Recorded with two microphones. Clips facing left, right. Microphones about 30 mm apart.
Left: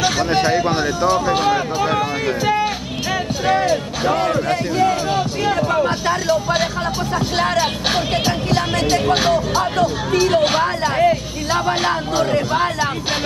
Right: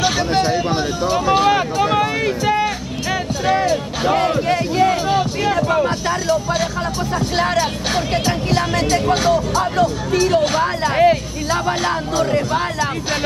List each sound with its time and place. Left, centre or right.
0.0 s a sound: centre
0.3 s speech: centre
2.6 s music: centre
4.5 s speech: right
5.1 s speech: centre
5.9 s speech: centre
7.6 s speech: left
8.3 s speech: centre
9.0 s speech: left
9.6 s speech: centre
10.6 s speech: centre
11.4 s speech: centre